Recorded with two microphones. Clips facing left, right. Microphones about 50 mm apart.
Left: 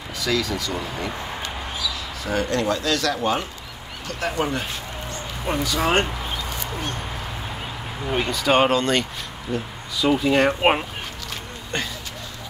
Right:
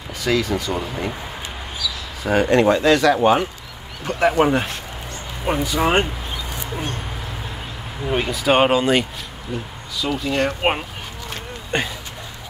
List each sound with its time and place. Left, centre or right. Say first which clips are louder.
0.2 s speech: right 4 dB; right
5.4 s speech: right 3 dB; centre
8.1 s speech: right 2 dB; centre
9.9 s speech: left 3 dB; centre
11.7 s speech: right 5 dB; right